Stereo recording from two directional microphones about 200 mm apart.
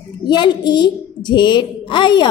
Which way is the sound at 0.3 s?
20° left (ahead or behind).